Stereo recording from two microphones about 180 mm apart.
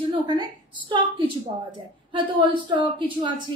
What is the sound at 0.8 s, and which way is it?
A woman's voice, 25° right (ahead or behind).